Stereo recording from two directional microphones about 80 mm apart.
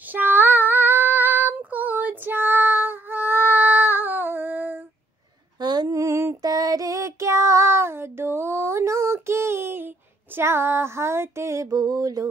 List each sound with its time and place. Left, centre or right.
0.1 s child singing: right
5.6 s mantra: right
5.9 s mantra: right
6.4 s a sound: right